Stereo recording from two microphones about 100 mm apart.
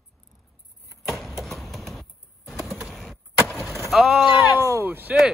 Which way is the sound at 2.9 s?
Centre (ahead or behind).